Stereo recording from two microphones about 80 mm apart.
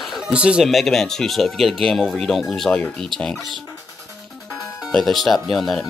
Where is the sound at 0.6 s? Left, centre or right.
Centre.